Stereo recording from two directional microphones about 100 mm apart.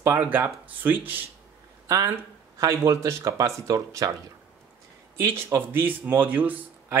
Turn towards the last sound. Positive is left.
turn(degrees=-20)  # may be behind; listen again after turning